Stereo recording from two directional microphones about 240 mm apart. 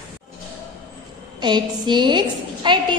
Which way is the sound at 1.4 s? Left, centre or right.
Centre.